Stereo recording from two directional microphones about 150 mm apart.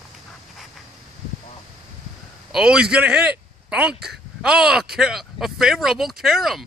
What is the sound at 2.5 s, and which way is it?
A man's voice, 5° right (ahead or behind).